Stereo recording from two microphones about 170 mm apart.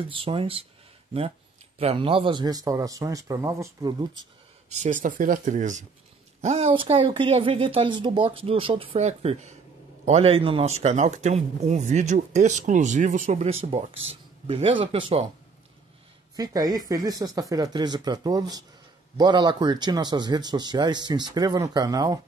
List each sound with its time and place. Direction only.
0.0 s speech: 30° right (ahead or behind)
1.8 s speech: 35° right (ahead or behind)
4.6 s speech: 45° right (ahead or behind)
16.3 s speech: 20° right (ahead or behind)